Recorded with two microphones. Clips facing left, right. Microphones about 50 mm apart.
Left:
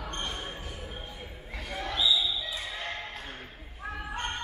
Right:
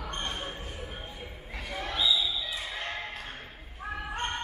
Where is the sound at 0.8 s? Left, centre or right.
Centre.